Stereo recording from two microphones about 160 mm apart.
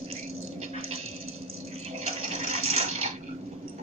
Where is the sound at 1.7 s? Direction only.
40° right (ahead or behind).